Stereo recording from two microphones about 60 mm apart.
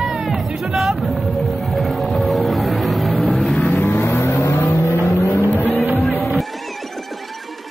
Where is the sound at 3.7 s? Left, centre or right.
Left.